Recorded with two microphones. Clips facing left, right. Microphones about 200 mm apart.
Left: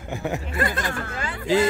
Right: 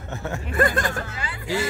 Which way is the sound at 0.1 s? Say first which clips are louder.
Left 3 dB; 15° left (ahead or behind).